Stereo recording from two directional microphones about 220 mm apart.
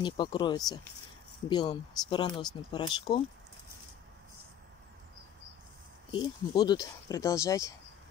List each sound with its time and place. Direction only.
0.0 s speech: 20° left (ahead or behind)
6.1 s speech: 20° left (ahead or behind)